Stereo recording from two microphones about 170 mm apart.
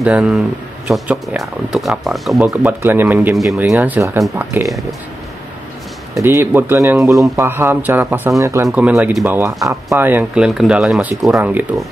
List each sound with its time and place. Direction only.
0.0 s speech: 5° right (ahead or behind)
2.5 s speech: 10° right (ahead or behind)
6.1 s speech: 15° right (ahead or behind)